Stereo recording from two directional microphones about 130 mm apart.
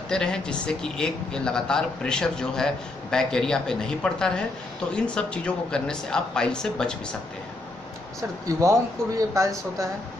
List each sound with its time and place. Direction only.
0.1 s a woman's voice: 5° left (ahead or behind)
8.5 s speech: 25° right (ahead or behind)